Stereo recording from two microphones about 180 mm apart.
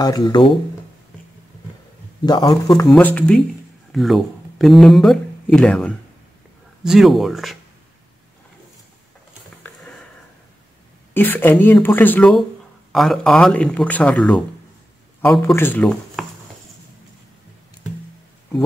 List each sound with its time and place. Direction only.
0.0 s speech: 20° left (ahead or behind)
2.2 s speech: 25° left (ahead or behind)
2.9 s speech: 10° left (ahead or behind)
11.1 s speech: 10° left (ahead or behind)
15.5 s speech: 10° left (ahead or behind)